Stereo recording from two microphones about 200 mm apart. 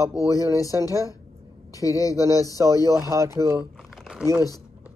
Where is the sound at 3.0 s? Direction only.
15° right (ahead or behind).